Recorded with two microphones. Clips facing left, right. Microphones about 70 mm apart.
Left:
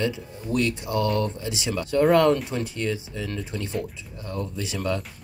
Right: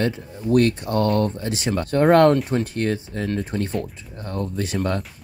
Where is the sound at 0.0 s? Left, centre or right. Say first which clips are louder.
Right 4 dB; right.